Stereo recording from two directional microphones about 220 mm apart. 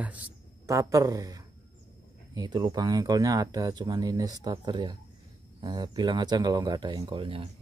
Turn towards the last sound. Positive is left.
turn(degrees=-25)  # may be behind; listen again after turning